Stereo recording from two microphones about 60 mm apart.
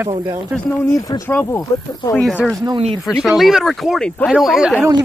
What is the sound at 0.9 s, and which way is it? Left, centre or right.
Speech, left.